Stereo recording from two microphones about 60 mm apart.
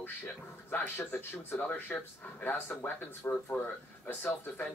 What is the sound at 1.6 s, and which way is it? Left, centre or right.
Speech, left.